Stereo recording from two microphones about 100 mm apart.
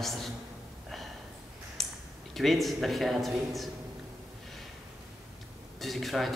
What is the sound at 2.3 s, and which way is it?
A man's voice, centre (ahead or behind).